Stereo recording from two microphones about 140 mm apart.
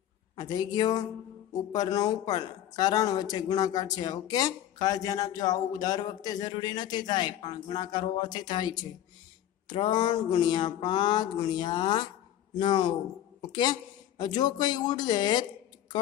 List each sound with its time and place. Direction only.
0.4 s speech: 30° left (ahead or behind)
9.7 s a sound: 35° left (ahead or behind)
13.5 s speech: 30° left (ahead or behind)